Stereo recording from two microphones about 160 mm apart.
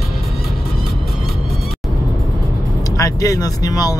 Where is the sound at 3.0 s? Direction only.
20° left (ahead or behind).